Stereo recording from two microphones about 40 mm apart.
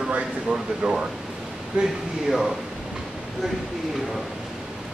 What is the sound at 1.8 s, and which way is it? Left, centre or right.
Speech, right.